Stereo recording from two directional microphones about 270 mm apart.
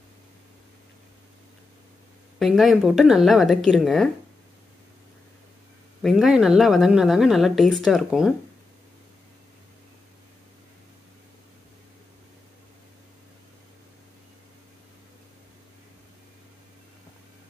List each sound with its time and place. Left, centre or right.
2.3 s speech: centre
6.0 s speech: centre